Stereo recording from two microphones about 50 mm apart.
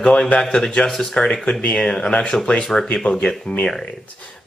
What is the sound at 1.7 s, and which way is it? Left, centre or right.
Speech, centre.